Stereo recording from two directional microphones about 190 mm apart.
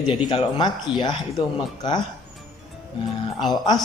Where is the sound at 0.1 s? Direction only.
25° left (ahead or behind).